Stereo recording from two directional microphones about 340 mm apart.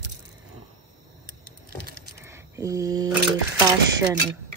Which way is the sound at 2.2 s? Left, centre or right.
Centre.